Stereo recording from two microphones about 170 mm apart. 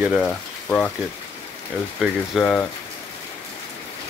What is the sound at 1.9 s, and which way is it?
Speech, 5° left (ahead or behind).